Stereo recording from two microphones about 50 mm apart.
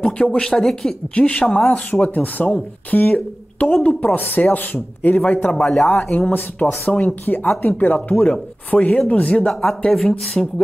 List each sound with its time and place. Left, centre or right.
0.0 s speech: centre
1.1 s speech: left
5.6 s speech: centre
6.1 s speech: left
7.2 s speech: left
7.7 s speech: left
9.5 s speech: centre